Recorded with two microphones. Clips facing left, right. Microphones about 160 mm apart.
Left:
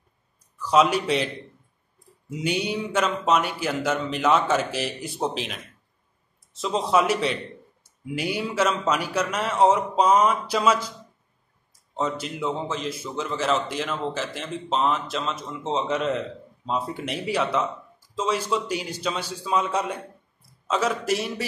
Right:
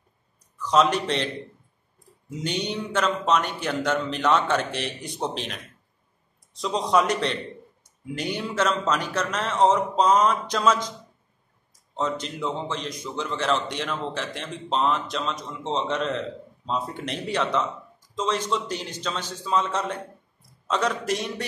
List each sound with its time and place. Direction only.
0.6 s a man's voice: 10° left (ahead or behind)
2.3 s a man's voice: 10° left (ahead or behind)
6.6 s a man's voice: 5° left (ahead or behind)
12.0 s a man's voice: 5° left (ahead or behind)